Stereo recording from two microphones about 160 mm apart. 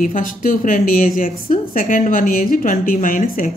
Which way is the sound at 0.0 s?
60° left (ahead or behind).